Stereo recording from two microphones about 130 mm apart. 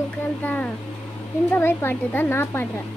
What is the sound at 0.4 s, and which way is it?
Speech, 15° left (ahead or behind).